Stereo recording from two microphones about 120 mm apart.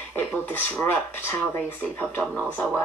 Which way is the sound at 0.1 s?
15° left (ahead or behind).